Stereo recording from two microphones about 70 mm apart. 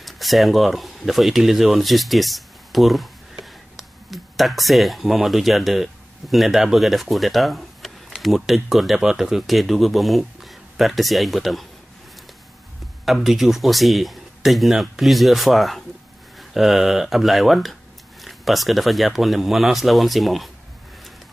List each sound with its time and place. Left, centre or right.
0.0 s speech: centre
13.0 s speech: centre